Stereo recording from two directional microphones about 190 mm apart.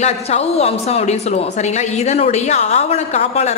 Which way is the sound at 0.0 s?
35° left (ahead or behind).